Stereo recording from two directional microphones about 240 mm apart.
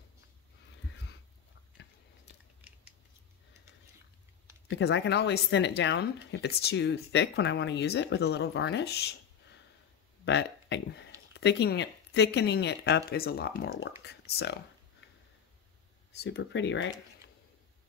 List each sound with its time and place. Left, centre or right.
4.6 s speech: left
14.0 s a sound: left
16.2 s speech: left